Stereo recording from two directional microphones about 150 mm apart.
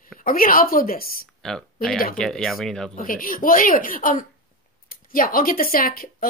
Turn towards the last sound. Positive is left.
turn(degrees=75)  # may be behind; listen again after turning